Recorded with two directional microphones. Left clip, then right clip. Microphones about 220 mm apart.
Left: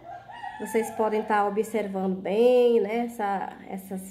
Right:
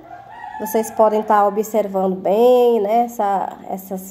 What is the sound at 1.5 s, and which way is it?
Speech, 20° right (ahead or behind).